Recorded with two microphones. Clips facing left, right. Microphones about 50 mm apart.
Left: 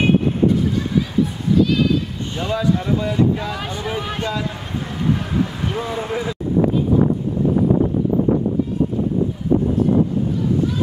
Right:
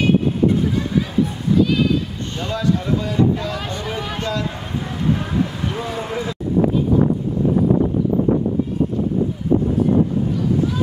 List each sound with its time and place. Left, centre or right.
2.3 s speech: centre
5.0 s vehicle: centre